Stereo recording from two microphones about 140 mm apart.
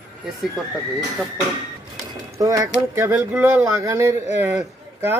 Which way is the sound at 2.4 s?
25° right (ahead or behind).